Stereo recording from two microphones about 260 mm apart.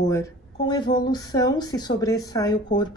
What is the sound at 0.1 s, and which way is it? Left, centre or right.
A woman's voice, centre.